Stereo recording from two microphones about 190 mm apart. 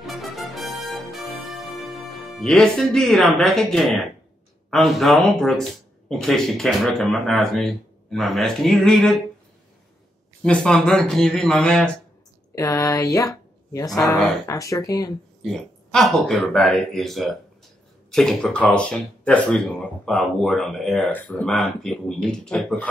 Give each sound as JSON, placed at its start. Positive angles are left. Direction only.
{"t": 0.0, "sound": "music", "side_deg": 0}
{"t": 4.6, "sound": "speech", "side_deg": 0}
{"t": 10.4, "sound": "speech", "side_deg": 5}
{"t": 12.5, "sound": "speech", "side_deg": 15}
{"t": 15.4, "sound": "speech", "side_deg": 0}